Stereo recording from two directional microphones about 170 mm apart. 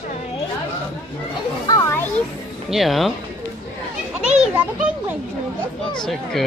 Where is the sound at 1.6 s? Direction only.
20° left (ahead or behind).